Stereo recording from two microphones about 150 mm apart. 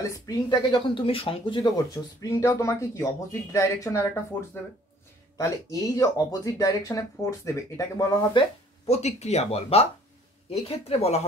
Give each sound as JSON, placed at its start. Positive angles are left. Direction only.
{"t": 0.0, "sound": "speech", "side_deg": 25}
{"t": 2.2, "sound": "speech", "side_deg": 20}
{"t": 8.8, "sound": "speech", "side_deg": 45}